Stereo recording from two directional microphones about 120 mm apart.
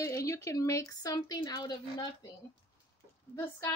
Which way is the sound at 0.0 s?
25° left (ahead or behind).